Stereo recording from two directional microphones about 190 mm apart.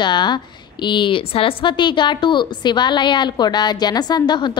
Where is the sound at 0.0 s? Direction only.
25° left (ahead or behind).